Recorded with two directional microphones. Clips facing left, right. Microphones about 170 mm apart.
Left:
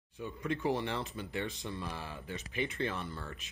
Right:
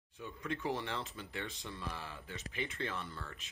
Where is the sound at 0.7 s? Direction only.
15° left (ahead or behind).